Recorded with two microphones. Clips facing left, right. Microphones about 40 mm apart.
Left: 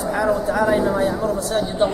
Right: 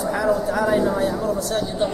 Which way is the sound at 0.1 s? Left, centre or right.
Centre.